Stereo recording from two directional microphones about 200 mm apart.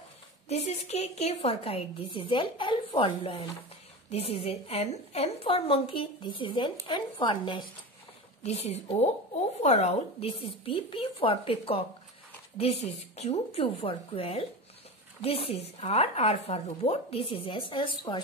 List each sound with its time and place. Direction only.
0.5 s a woman's voice: 35° left (ahead or behind)